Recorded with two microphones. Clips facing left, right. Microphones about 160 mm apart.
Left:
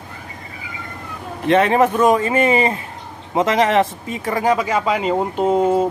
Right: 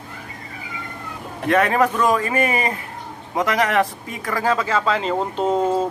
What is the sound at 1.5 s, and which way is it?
Speech, 25° left (ahead or behind).